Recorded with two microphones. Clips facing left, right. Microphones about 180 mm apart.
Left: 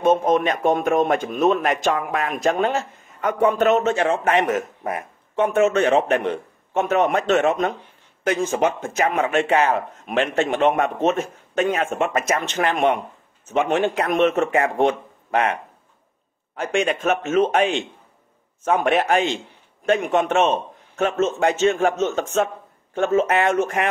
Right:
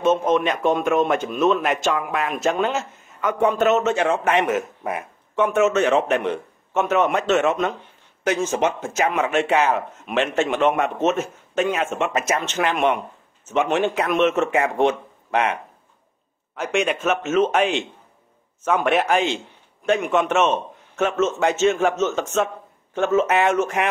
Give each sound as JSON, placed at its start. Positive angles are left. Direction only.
{"t": 0.0, "sound": "a man's voice", "side_deg": 45}
{"t": 8.8, "sound": "a man's voice", "side_deg": 55}
{"t": 9.1, "sound": "a man's voice", "side_deg": 35}
{"t": 16.7, "sound": "a man's voice", "side_deg": 45}
{"t": 17.5, "sound": "a man's voice", "side_deg": 35}